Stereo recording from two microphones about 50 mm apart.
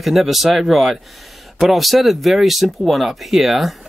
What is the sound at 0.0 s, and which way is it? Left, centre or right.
Speech, centre.